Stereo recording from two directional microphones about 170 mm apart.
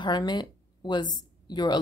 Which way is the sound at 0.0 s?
25° left (ahead or behind).